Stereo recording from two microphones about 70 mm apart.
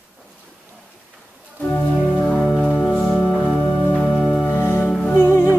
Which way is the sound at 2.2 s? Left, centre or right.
Centre.